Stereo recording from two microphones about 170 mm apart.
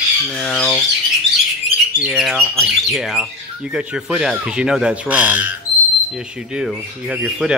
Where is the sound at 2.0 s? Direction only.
5° right (ahead or behind).